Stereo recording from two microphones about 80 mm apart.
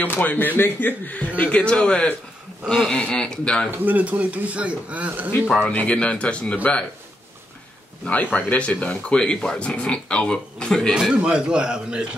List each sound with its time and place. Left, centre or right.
0.0 s speech: left
3.7 s speech: right
5.5 s speech: centre
8.0 s speech: centre
11.2 s a man's voice: centre